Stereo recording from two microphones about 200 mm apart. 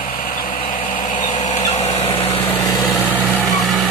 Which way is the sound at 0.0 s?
45° left (ahead or behind).